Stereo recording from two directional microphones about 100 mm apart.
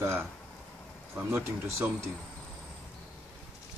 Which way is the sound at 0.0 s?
25° right (ahead or behind).